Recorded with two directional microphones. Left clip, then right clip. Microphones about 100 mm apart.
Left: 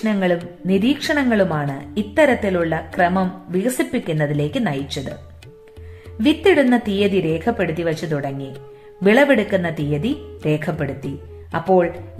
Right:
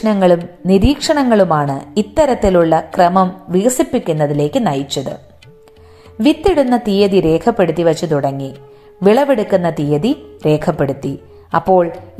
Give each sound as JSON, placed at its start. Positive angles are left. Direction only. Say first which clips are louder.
{"t": 0.0, "sound": "a woman's voice", "louder": "right 8 dB", "side_deg": -30}
{"t": 6.2, "sound": "a woman's voice", "louder": "right 2 dB", "side_deg": -25}